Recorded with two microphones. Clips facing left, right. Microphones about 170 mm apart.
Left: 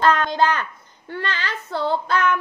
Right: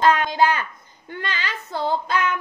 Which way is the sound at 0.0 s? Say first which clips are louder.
Even; 15° right (ahead or behind).